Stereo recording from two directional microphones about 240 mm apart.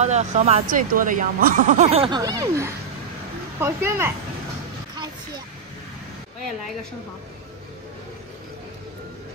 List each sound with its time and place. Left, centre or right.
0.0 s speech: right; by 4.1 s centre